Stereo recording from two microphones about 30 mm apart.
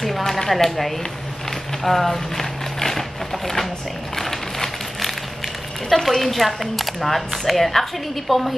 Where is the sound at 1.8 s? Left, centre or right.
Centre.